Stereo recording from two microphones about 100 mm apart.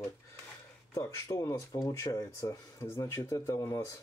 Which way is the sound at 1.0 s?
35° left (ahead or behind).